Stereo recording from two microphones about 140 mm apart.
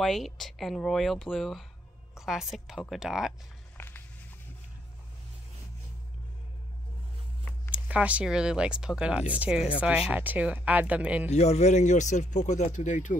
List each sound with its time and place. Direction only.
0.0 s a woman's voice: centre (ahead or behind)
3.7 s a sound: 15° left (ahead or behind)
7.7 s speech: 10° right (ahead or behind)
11.2 s speech: 50° left (ahead or behind)